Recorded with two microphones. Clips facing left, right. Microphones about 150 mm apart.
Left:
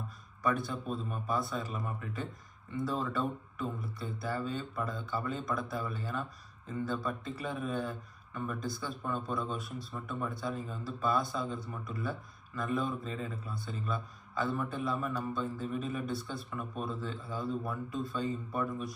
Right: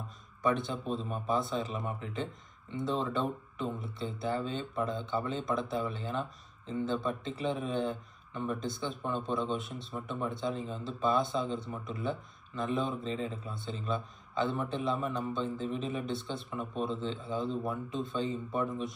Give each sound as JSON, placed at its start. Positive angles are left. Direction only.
{"t": 0.4, "sound": "a man's voice", "side_deg": -25}